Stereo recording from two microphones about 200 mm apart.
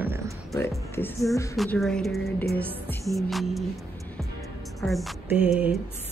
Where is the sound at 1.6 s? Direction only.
Centre (ahead or behind).